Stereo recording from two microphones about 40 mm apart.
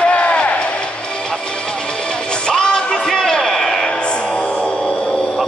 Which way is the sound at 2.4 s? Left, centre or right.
Left.